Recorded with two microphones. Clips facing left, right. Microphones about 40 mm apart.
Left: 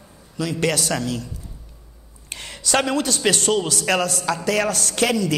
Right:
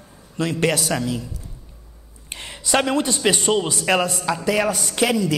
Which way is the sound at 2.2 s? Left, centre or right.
Centre.